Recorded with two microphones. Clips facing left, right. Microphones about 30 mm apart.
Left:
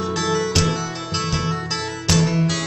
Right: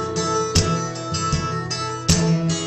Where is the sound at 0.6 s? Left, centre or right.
Left.